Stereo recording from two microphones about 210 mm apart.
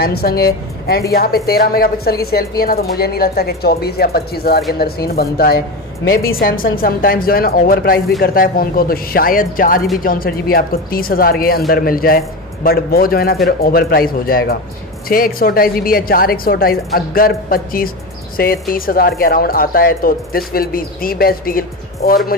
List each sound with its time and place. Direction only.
0.0 s a woman's voice: 45° left (ahead or behind)